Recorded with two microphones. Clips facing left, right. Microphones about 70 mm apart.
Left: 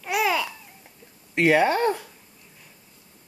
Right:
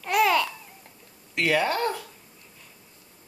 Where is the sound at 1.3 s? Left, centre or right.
Left.